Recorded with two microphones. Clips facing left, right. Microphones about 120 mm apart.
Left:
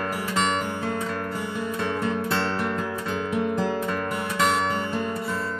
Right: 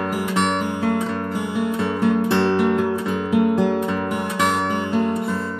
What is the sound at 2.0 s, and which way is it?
Music, 5° right (ahead or behind).